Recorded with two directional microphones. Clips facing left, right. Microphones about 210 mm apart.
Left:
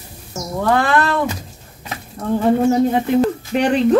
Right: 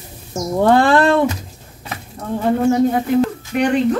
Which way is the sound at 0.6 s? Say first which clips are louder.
Right 4 dB; 30° right (ahead or behind).